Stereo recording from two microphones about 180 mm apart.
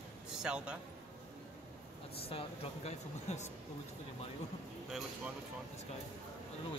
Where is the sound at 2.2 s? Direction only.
35° left (ahead or behind).